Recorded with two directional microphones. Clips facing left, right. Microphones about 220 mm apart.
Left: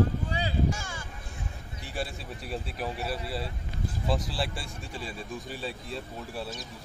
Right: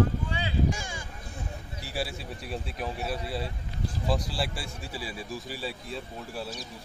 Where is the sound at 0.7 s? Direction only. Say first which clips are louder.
Right 1 dB; 15° right (ahead or behind).